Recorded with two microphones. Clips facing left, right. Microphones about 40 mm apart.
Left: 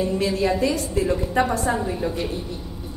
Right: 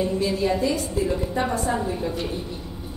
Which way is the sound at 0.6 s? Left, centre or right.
Left.